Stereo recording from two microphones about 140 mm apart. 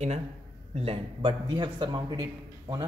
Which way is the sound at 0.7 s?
45° right (ahead or behind).